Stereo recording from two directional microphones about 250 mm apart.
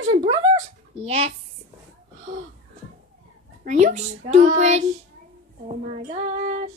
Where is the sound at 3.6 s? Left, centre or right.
Right.